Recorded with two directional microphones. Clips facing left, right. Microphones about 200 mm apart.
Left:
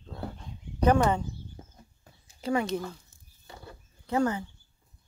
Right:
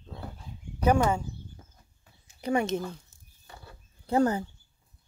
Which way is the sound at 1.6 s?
25° left (ahead or behind).